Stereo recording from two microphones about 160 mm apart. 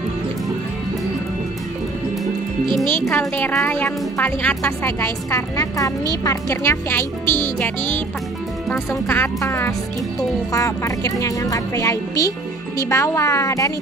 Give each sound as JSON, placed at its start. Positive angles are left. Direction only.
{"t": 2.6, "sound": "speech", "side_deg": -30}
{"t": 2.9, "sound": "a woman's voice", "side_deg": 10}